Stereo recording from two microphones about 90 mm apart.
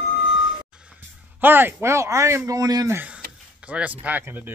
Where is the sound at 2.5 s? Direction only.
45° right (ahead or behind).